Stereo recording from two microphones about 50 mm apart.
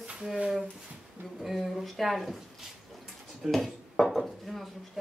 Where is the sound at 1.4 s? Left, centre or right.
Centre.